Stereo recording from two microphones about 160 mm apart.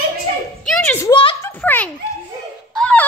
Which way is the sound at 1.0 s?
30° left (ahead or behind).